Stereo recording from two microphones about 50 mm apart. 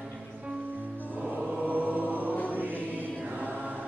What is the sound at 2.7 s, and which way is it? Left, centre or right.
Music, left.